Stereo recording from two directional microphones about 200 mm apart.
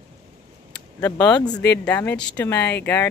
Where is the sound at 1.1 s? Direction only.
20° left (ahead or behind).